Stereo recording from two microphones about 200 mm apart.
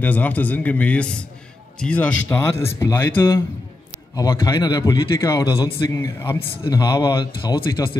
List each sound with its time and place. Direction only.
0.0 s a man's voice: 10° left (ahead or behind)